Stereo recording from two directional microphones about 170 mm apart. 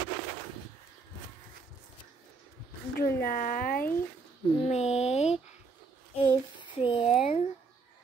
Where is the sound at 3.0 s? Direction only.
60° left (ahead or behind).